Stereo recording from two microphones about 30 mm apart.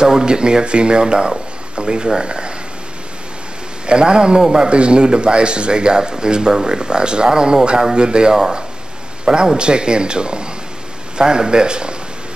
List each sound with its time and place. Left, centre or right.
0.0 s speech: right
3.8 s speech: right
8.3 s speech: centre
9.2 s speech: right